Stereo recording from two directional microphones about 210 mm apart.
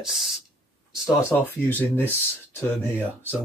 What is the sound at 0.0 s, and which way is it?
Speech, centre (ahead or behind).